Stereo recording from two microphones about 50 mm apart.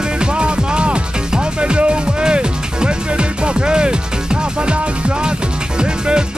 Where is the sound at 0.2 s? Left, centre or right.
Right.